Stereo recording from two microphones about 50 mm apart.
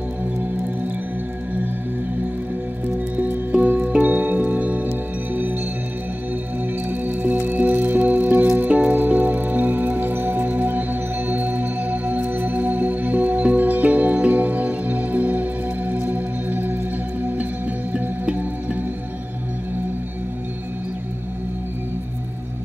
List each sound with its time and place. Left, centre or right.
3.6 s music: right
6.9 s music: right
17.6 s music: right